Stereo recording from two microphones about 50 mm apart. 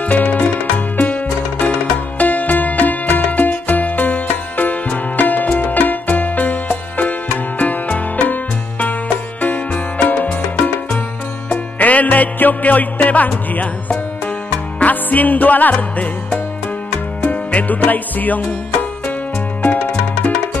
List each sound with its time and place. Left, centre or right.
0.0 s music: left